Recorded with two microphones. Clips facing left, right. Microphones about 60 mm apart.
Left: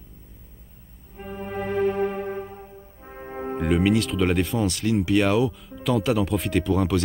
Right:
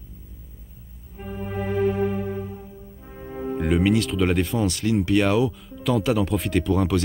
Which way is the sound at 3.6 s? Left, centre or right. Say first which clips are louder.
Even; centre.